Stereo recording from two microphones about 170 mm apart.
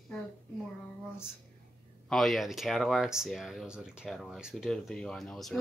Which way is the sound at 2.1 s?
Centre (ahead or behind).